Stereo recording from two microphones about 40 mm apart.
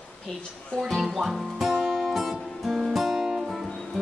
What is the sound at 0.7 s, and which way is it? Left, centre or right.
Guitar, centre.